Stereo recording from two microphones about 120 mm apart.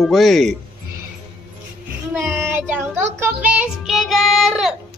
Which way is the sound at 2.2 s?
20° right (ahead or behind).